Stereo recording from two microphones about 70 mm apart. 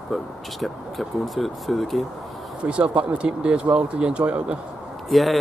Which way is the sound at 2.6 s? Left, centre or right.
Centre.